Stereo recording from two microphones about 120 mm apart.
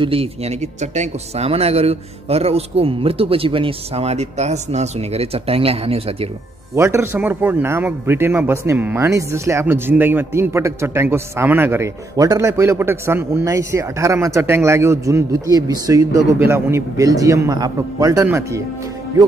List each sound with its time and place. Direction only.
0.0 s speech: 50° right (ahead or behind)
6.7 s speech: 25° right (ahead or behind)
16.3 s speech: 20° right (ahead or behind)